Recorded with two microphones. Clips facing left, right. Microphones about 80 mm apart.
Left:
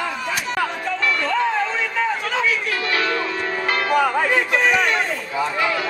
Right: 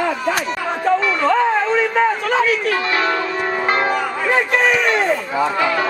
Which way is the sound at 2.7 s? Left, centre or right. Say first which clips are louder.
Right 4 dB; right.